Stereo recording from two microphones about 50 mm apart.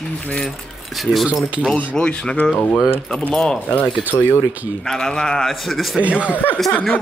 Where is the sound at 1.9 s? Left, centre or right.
Centre.